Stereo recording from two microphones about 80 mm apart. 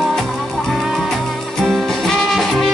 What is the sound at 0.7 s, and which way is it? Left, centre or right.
Music, centre.